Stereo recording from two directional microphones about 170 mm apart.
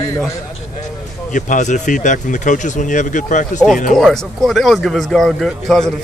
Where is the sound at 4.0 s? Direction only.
Centre (ahead or behind).